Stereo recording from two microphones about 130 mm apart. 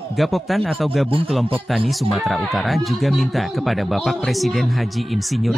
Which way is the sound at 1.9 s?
Centre (ahead or behind).